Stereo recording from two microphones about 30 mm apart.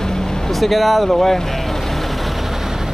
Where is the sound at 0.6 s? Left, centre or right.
Centre.